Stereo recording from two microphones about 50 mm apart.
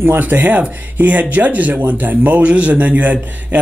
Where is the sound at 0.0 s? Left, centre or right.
Right.